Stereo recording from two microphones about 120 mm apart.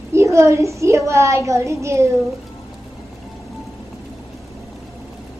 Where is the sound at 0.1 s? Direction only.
25° right (ahead or behind).